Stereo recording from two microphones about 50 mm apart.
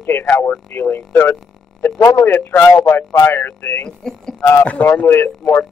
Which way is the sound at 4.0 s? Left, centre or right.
Centre.